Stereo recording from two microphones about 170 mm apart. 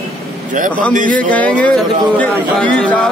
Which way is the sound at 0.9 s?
50° right (ahead or behind).